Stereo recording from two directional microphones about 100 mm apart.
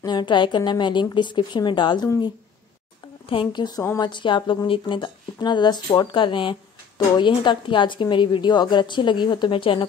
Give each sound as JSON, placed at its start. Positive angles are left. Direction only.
{"t": 0.0, "sound": "a woman's voice", "side_deg": 50}
{"t": 3.3, "sound": "a woman's voice", "side_deg": 55}